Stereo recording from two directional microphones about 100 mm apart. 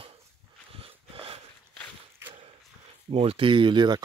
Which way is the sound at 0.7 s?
70° right (ahead or behind).